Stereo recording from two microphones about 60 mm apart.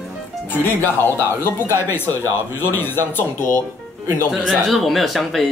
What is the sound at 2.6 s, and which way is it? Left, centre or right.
Speech, left.